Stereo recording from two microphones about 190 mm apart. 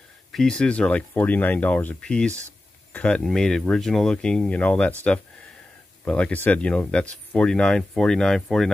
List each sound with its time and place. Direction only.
0.3 s speech: 5° left (ahead or behind)
6.0 s speech: 5° left (ahead or behind)